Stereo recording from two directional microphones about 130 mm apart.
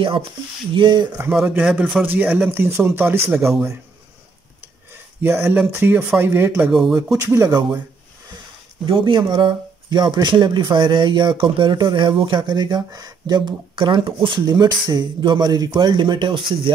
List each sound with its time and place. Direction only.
0.7 s speech: 35° right (ahead or behind)
1.3 s speech: 10° right (ahead or behind)
5.2 s speech: 15° right (ahead or behind)
6.7 s speech: centre (ahead or behind)
7.2 s speech: 25° right (ahead or behind)
8.8 s speech: 40° right (ahead or behind)